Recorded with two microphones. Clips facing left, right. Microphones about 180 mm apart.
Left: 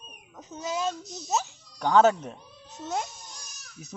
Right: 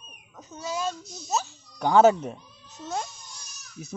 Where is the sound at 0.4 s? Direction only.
20° left (ahead or behind).